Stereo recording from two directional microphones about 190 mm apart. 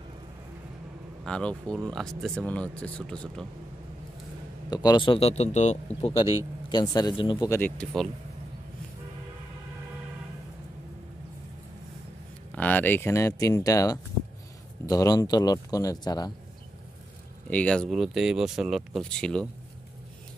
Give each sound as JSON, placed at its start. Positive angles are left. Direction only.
{"t": 1.2, "sound": "speech", "side_deg": 5}
{"t": 4.6, "sound": "speech", "side_deg": 20}
{"t": 6.7, "sound": "speech", "side_deg": 20}
{"t": 7.4, "sound": "speech", "side_deg": 10}
{"t": 12.5, "sound": "speech", "side_deg": 10}
{"t": 17.5, "sound": "speech", "side_deg": 5}